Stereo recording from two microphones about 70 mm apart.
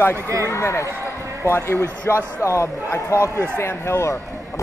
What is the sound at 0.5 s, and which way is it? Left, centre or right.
Speech, left.